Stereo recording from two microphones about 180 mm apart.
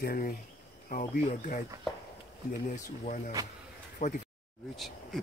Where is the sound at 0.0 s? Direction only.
50° left (ahead or behind).